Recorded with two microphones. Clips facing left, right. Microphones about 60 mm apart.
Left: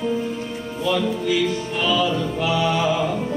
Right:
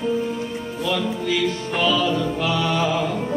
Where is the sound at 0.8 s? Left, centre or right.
Centre.